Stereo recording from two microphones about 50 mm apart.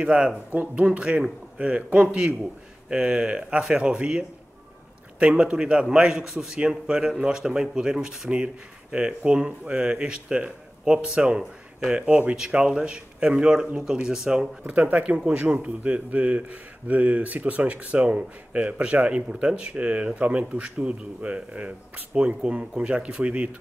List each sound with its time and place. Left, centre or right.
0.0 s a man's voice: centre
8.9 s a man's voice: centre
14.7 s speech: right